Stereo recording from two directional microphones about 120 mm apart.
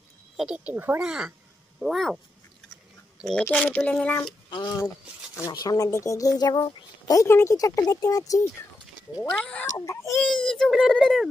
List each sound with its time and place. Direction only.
0.4 s a child's voice: 10° right (ahead or behind)
3.3 s speech: 10° left (ahead or behind)
4.5 s speech: 40° left (ahead or behind)
7.2 s speech: 20° left (ahead or behind)
9.3 s speech: 10° left (ahead or behind)
9.8 s speech: 25° left (ahead or behind)
10.2 s a child's voice: 5° left (ahead or behind)